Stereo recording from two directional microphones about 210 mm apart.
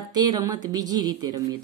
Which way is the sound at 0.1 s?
20° right (ahead or behind).